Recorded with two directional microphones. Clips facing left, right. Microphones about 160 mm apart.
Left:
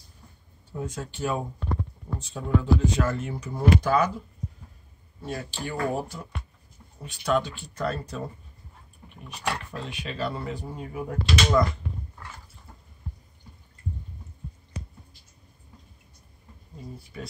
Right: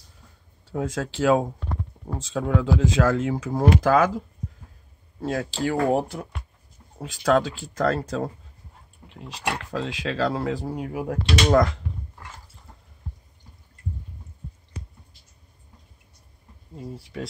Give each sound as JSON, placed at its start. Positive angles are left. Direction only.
{"t": 0.7, "sound": "speech", "side_deg": -90}
{"t": 5.2, "sound": "speech", "side_deg": -90}
{"t": 5.9, "sound": "speech", "side_deg": -65}
{"t": 7.0, "sound": "speech", "side_deg": -90}
{"t": 9.6, "sound": "speech", "side_deg": -90}
{"t": 16.7, "sound": "a sound", "side_deg": -90}